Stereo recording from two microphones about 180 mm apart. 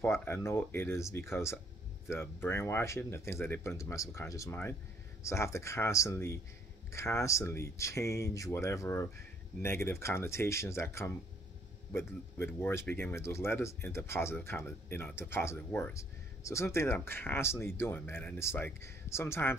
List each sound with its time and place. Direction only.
0.0 s speech: 15° left (ahead or behind)